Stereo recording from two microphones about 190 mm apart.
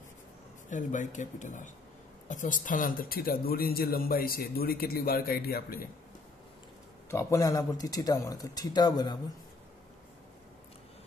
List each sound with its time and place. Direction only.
0.7 s speech: 40° left (ahead or behind)
7.1 s speech: 15° left (ahead or behind)